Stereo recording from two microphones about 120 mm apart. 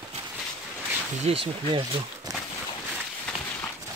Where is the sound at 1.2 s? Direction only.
50° right (ahead or behind).